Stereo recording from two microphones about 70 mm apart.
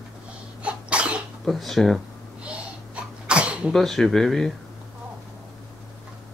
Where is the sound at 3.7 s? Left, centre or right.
Centre.